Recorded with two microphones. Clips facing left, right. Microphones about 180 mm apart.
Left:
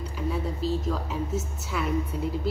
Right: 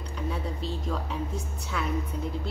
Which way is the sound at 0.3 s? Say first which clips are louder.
Left 6 dB; centre (ahead or behind).